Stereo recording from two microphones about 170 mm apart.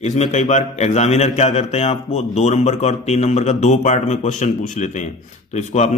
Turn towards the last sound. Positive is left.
turn(degrees=40)  # may be behind; listen again after turning